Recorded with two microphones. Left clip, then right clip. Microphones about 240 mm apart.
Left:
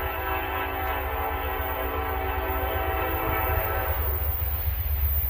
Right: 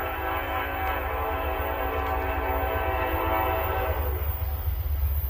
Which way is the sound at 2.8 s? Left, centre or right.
Centre.